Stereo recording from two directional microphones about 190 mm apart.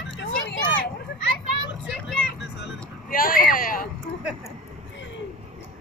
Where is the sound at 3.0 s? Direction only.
50° left (ahead or behind).